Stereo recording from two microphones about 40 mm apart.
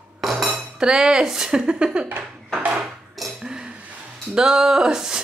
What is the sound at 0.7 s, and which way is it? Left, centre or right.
A woman's voice, centre.